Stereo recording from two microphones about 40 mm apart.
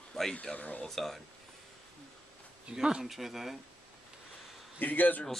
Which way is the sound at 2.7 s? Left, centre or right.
Centre.